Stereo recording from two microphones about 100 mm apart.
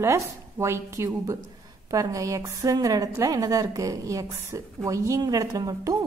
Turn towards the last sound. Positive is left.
turn(degrees=-35)  # may be behind; listen again after turning